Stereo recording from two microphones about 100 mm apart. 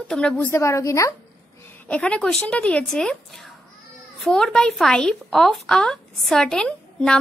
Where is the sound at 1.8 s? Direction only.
10° left (ahead or behind).